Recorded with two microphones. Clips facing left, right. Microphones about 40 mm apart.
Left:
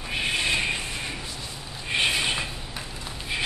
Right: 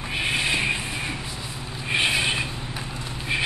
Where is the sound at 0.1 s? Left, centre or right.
Centre.